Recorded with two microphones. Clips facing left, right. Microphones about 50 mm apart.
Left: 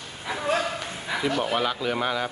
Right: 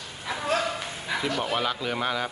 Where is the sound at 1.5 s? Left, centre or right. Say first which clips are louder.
Left 2 dB; centre.